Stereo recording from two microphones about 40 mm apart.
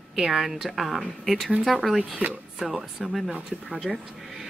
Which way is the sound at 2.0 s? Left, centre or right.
Right.